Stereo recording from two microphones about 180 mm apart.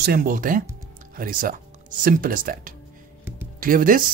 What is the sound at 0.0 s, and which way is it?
Speech, 55° right (ahead or behind).